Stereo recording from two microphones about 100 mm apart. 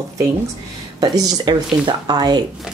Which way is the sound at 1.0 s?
40° right (ahead or behind).